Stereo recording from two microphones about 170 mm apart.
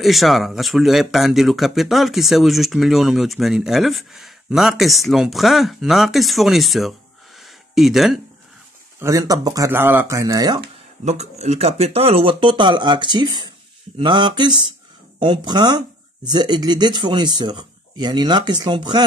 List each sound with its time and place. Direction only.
0.0 s speech: centre (ahead or behind)
9.0 s speech: 20° right (ahead or behind)
11.1 s speech: 40° right (ahead or behind)